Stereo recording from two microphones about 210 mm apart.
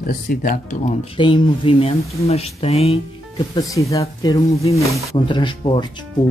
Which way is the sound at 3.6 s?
15° left (ahead or behind).